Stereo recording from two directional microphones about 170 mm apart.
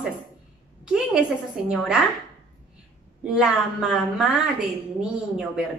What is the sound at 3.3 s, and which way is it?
A woman's voice, 5° right (ahead or behind).